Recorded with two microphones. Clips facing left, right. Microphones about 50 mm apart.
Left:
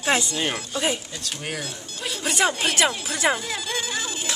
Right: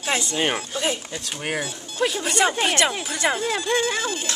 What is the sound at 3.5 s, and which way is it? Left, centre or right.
Speech, centre.